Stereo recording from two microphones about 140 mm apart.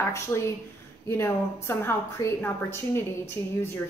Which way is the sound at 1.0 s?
20° left (ahead or behind).